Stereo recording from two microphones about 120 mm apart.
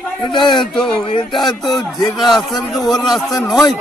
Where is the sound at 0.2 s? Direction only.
40° left (ahead or behind).